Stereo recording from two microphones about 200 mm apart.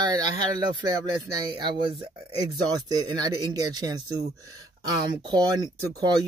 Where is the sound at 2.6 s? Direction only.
20° right (ahead or behind).